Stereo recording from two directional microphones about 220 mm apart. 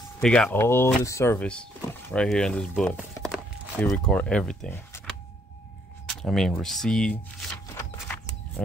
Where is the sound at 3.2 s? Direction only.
Centre (ahead or behind).